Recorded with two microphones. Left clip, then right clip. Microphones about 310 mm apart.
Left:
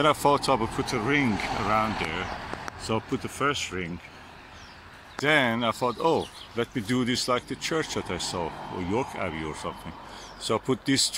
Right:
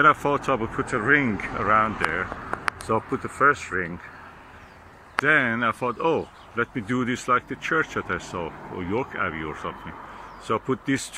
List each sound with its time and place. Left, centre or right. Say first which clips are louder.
0.0 s speech: right 3 dB; centre
5.2 s speech: right 3 dB; centre